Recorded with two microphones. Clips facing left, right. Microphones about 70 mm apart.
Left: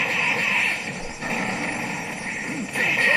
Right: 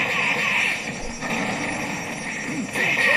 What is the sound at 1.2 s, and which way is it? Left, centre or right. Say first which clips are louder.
Vehicle: right 1 dB; left.